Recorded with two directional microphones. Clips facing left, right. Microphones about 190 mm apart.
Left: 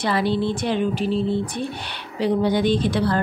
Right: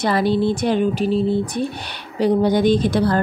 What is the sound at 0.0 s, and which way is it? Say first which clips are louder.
Speech: right 4 dB; 45° right (ahead or behind).